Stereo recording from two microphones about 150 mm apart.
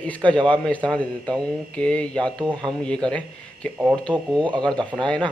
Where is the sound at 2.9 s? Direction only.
5° left (ahead or behind).